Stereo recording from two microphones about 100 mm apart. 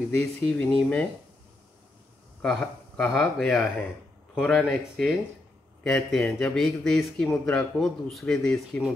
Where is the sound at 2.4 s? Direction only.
5° left (ahead or behind).